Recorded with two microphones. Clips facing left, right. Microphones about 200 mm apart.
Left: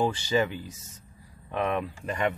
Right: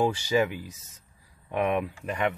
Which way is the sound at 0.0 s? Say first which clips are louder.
Right 1 dB; 10° right (ahead or behind).